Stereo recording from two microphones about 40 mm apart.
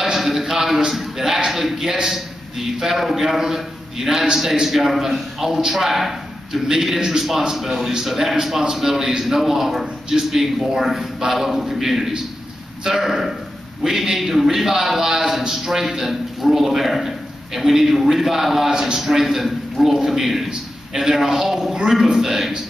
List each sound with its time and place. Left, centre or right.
0.0 s a sound: centre
2.0 s a man's voice: centre
18.7 s a man's voice: centre
18.9 s a man's voice: centre